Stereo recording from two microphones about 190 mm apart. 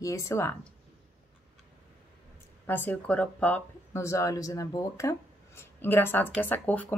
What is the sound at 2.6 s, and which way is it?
Speech, 10° left (ahead or behind).